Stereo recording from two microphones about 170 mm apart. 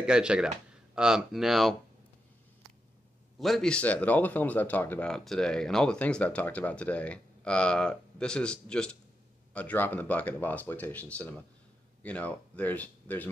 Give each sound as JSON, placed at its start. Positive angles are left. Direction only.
{"t": 0.0, "sound": "speech", "side_deg": -5}
{"t": 3.3, "sound": "speech", "side_deg": 0}